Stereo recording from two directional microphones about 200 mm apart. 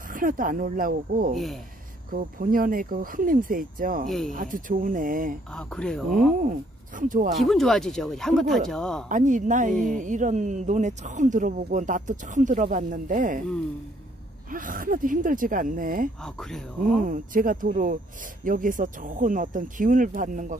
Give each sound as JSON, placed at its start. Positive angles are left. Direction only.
{"t": 0.1, "sound": "speech", "side_deg": -45}
{"t": 1.3, "sound": "speech", "side_deg": 0}
{"t": 2.0, "sound": "speech", "side_deg": -45}
{"t": 5.5, "sound": "speech", "side_deg": 5}
{"t": 7.0, "sound": "speech", "side_deg": -40}
{"t": 7.3, "sound": "speech", "side_deg": 0}
{"t": 9.1, "sound": "speech", "side_deg": -40}
{"t": 14.5, "sound": "speech", "side_deg": -45}